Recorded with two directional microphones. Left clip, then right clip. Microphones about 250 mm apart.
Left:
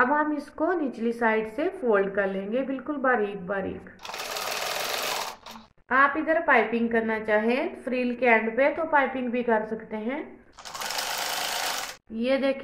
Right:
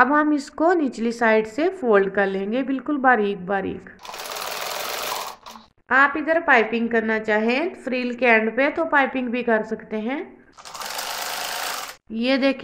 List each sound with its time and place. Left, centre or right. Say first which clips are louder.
0.0 s a woman's voice: right 6 dB; right
4.3 s sewing machine: right 1 dB; centre
5.9 s a woman's voice: right 4 dB; right
10.8 s sewing machine: right 1 dB; centre
12.1 s a woman's voice: right 4 dB; right